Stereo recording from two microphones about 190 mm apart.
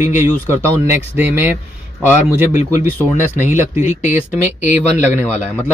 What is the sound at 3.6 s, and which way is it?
Speech, 10° right (ahead or behind).